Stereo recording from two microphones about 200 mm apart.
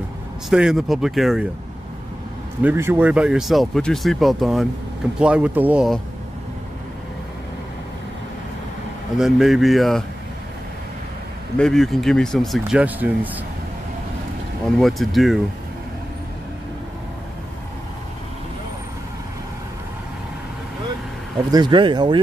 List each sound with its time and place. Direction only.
0.5 s speech: centre (ahead or behind)
2.6 s speech: 10° right (ahead or behind)
9.2 s speech: centre (ahead or behind)
11.5 s speech: 5° left (ahead or behind)
14.8 s speech: centre (ahead or behind)
21.5 s speech: 20° right (ahead or behind)